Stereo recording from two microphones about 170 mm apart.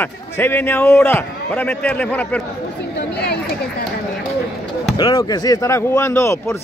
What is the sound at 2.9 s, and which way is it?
Chatter, 75° left (ahead or behind).